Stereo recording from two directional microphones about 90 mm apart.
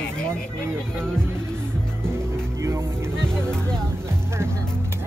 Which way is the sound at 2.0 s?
30° right (ahead or behind).